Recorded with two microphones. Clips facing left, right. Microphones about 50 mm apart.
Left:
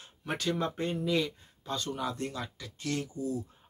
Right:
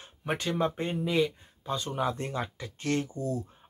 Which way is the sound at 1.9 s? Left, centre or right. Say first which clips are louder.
Right 5 dB; right.